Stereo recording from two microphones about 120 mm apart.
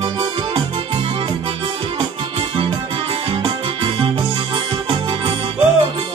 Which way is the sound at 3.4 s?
45° right (ahead or behind).